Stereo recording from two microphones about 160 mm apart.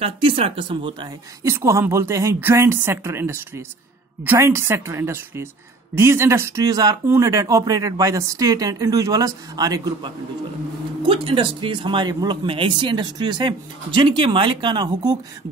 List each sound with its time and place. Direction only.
0.0 s speech: 35° right (ahead or behind)
11.1 s speech: 35° right (ahead or behind)